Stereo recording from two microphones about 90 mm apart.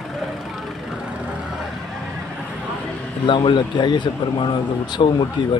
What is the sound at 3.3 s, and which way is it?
Speech, 60° left (ahead or behind).